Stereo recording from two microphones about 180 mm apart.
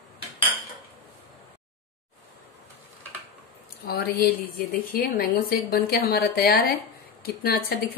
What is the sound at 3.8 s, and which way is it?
A woman's voice, 60° left (ahead or behind).